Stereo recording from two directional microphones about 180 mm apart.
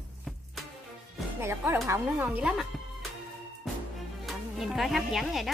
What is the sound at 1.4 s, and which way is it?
Speech, 15° right (ahead or behind).